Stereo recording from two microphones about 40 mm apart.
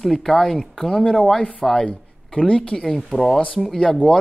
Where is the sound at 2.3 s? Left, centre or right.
Left.